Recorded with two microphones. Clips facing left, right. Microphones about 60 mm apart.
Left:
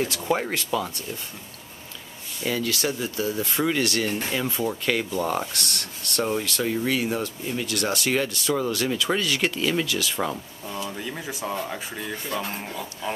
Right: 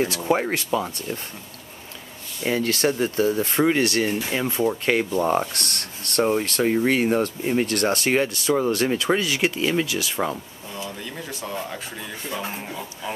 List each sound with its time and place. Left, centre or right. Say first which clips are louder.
0.0 s speech: right 3 dB; right
2.4 s speech: right 4 dB; right
9.1 s speech: right 2 dB; centre
10.9 s speech: left 1 dB; centre